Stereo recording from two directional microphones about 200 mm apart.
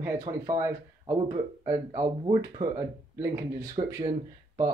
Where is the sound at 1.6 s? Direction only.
15° right (ahead or behind).